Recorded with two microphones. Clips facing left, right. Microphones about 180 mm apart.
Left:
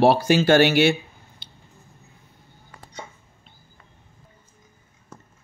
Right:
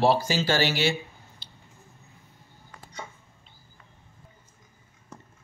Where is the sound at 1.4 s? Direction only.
65° left (ahead or behind).